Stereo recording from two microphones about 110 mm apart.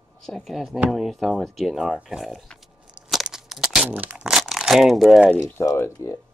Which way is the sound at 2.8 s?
5° right (ahead or behind).